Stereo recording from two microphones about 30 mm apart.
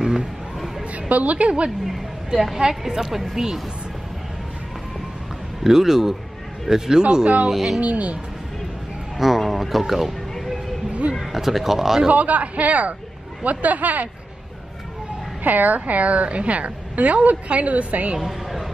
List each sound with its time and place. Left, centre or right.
0.0 s a sound: right
0.9 s a woman's voice: right
2.9 s speech: centre
5.6 s speech: centre
6.7 s speech: right
7.5 s speech: centre
7.8 s a woman's voice: right
9.1 s speech: centre
10.9 s a sound: right
11.3 s speech: centre
12.1 s speech: right
15.4 s a woman's voice: right